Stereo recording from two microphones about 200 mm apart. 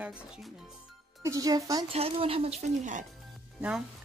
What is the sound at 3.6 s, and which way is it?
Speech, 5° right (ahead or behind).